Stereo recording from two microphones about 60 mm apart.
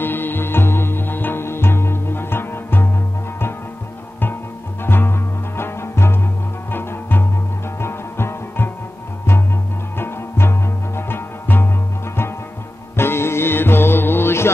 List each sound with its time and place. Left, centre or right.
0.0 s music: left
4.8 s music: left
9.9 s music: left
12.9 s music: left